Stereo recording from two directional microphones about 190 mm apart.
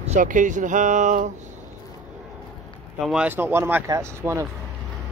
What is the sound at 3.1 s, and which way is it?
Speech, 5° right (ahead or behind).